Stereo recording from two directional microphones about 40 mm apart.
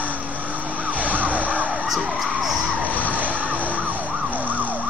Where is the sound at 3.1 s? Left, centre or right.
Right.